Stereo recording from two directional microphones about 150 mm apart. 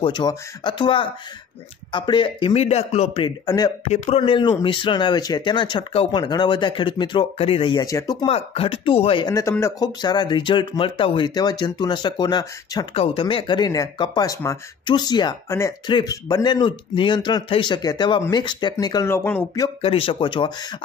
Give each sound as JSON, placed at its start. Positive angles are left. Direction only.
{"t": 0.0, "sound": "a man's voice", "side_deg": 30}
{"t": 3.3, "sound": "speech", "side_deg": 25}
{"t": 3.9, "sound": "speech", "side_deg": 50}
{"t": 4.2, "sound": "a man's voice", "side_deg": 35}
{"t": 7.8, "sound": "speech", "side_deg": 25}
{"t": 8.3, "sound": "a man's voice", "side_deg": 40}
{"t": 19.0, "sound": "speech", "side_deg": 15}
{"t": 19.8, "sound": "a man's voice", "side_deg": 40}